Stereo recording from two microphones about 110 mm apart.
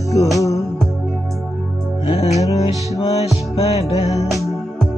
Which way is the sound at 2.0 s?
65° left (ahead or behind).